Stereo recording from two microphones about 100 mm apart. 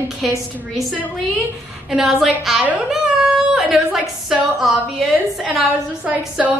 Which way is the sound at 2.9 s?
5° right (ahead or behind).